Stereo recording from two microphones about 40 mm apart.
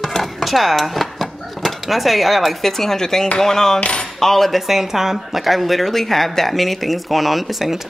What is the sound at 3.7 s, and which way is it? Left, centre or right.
Cutlery, left.